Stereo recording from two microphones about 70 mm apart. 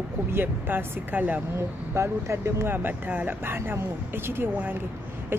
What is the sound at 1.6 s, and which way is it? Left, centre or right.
Speech, right.